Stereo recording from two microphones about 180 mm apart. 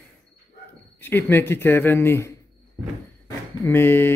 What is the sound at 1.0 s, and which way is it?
Speech, 10° left (ahead or behind).